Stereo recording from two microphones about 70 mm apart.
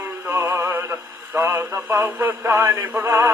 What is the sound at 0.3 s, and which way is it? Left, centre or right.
Music, right.